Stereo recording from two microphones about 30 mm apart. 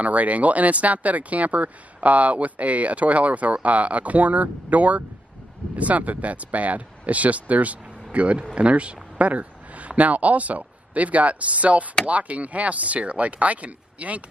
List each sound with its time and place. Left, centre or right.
0.0 s speech: right